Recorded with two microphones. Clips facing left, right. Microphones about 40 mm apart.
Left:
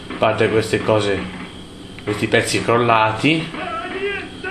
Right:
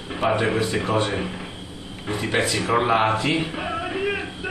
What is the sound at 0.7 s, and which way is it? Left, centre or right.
Speech, left.